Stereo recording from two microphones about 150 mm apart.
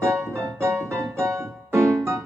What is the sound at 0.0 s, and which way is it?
Music, 20° right (ahead or behind).